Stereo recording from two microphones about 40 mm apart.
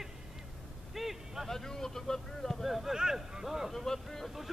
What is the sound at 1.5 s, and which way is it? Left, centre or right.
Vehicle, centre.